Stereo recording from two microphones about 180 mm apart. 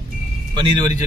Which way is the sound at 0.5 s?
25° right (ahead or behind).